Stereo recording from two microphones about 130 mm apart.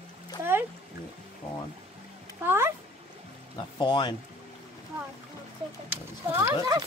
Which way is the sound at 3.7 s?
35° left (ahead or behind).